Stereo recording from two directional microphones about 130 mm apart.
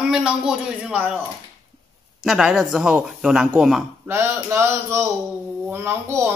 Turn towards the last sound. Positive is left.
turn(degrees=-20)  # may be behind; listen again after turning